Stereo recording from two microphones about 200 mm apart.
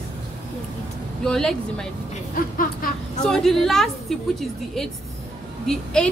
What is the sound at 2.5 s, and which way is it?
Speech, 45° left (ahead or behind).